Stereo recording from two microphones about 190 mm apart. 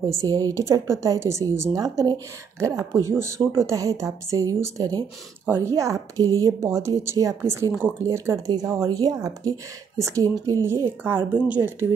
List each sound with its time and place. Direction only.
0.1 s speech: 15° right (ahead or behind)